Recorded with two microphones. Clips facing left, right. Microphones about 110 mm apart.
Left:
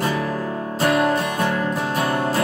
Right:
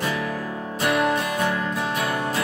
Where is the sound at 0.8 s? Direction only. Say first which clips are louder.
Left 3 dB; 35° left (ahead or behind).